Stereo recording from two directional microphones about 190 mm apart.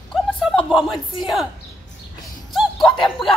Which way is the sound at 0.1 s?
Centre (ahead or behind).